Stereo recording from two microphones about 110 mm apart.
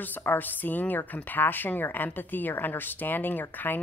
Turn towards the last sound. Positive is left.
turn(degrees=15)  # may be behind; listen again after turning